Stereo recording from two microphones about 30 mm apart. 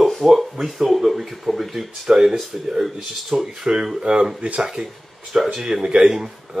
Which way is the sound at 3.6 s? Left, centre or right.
Right.